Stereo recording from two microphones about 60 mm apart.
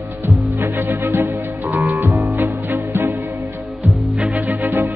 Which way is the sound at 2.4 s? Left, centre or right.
Right.